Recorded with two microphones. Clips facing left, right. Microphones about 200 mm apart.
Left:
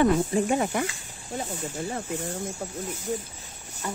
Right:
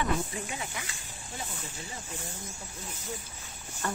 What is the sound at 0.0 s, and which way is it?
Speech, 45° left (ahead or behind).